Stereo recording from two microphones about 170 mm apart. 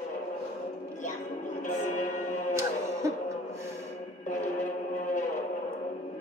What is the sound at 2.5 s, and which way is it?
Music, 15° right (ahead or behind).